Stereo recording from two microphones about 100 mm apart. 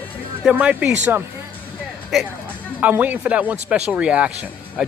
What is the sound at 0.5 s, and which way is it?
Speech, 10° right (ahead or behind).